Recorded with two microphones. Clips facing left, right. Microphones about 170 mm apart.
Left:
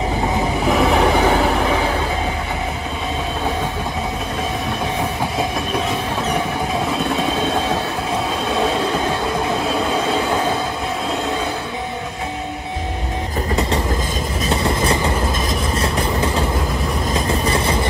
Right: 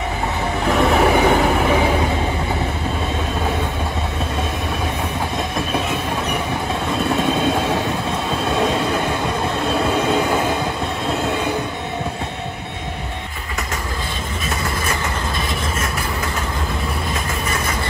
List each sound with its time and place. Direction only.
0.7 s train: centre (ahead or behind)
14.5 s train: 30° left (ahead or behind)
15.8 s vehicle: 30° left (ahead or behind)
17.3 s train: 35° left (ahead or behind)